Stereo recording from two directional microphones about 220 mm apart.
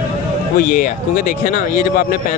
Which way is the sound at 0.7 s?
35° left (ahead or behind).